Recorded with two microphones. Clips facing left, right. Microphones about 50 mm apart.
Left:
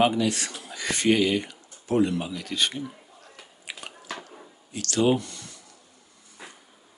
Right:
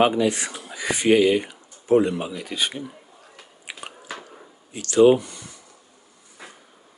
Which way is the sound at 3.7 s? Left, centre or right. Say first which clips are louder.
Right 2 dB; centre.